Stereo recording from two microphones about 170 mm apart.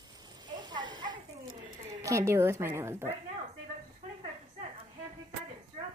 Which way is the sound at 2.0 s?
15° right (ahead or behind).